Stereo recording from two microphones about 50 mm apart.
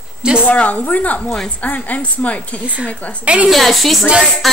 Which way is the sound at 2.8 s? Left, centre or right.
Right.